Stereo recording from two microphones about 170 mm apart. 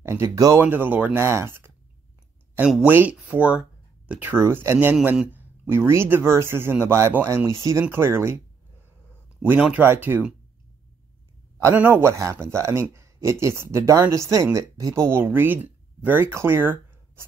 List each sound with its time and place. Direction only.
0.0 s speech: 15° right (ahead or behind)
9.4 s speech: 10° right (ahead or behind)
11.6 s speech: 15° right (ahead or behind)